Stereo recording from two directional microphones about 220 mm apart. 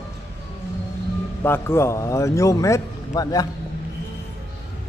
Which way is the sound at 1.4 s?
10° left (ahead or behind).